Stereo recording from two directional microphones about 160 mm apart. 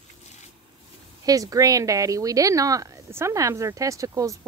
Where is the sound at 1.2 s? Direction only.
20° right (ahead or behind).